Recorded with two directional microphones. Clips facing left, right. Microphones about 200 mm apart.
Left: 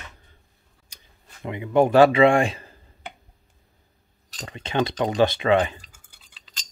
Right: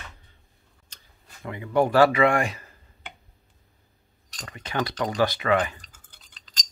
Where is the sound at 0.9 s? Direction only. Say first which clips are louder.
Left 1 dB; 20° left (ahead or behind).